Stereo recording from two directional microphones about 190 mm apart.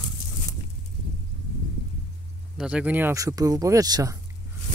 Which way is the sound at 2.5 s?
5° right (ahead or behind).